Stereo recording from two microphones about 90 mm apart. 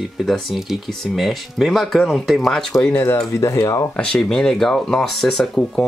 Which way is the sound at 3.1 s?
35° left (ahead or behind).